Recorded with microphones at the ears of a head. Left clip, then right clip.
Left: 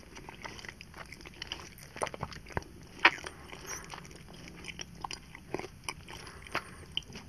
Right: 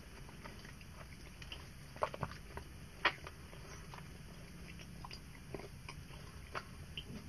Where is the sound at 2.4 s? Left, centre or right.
Left.